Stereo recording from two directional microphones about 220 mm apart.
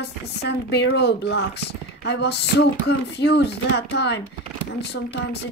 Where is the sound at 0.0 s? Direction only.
50° left (ahead or behind).